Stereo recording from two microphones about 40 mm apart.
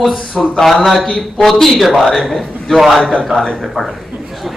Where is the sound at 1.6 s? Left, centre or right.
Centre.